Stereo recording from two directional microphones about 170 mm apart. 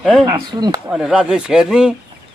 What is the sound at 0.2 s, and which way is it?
Speech, 25° right (ahead or behind).